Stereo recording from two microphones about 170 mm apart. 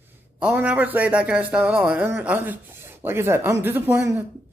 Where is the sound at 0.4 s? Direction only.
5° right (ahead or behind).